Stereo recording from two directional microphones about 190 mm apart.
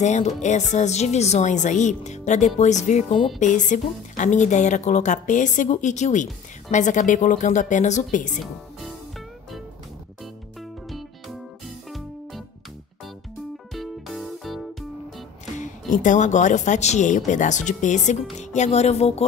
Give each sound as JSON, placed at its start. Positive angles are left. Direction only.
{"t": 0.0, "sound": "a woman's voice", "side_deg": 40}
{"t": 10.2, "sound": "music", "side_deg": 0}
{"t": 13.7, "sound": "music", "side_deg": 0}
{"t": 15.6, "sound": "a woman's voice", "side_deg": 40}